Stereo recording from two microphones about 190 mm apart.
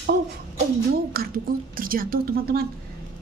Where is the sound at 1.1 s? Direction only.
50° right (ahead or behind).